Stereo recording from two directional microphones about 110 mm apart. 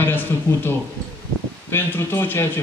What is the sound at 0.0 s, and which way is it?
Speech, 20° left (ahead or behind).